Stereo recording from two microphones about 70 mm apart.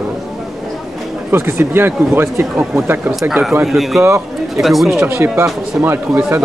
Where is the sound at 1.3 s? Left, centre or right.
Right.